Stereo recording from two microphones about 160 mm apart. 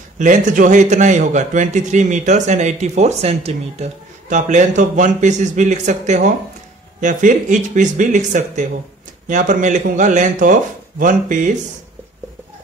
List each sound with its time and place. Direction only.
0.2 s a man's voice: 50° right (ahead or behind)